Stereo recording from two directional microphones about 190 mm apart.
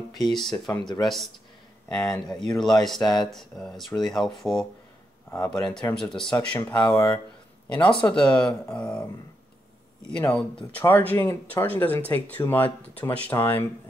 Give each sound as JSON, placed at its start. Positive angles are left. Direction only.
{"t": 0.2, "sound": "speech", "side_deg": 0}
{"t": 0.5, "sound": "speech", "side_deg": 20}
{"t": 1.0, "sound": "speech", "side_deg": 0}
{"t": 6.3, "sound": "speech", "side_deg": 15}
{"t": 8.1, "sound": "speech", "side_deg": 5}
{"t": 10.1, "sound": "speech", "side_deg": 5}